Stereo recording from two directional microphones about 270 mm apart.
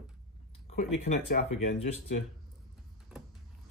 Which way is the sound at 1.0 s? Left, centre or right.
Left.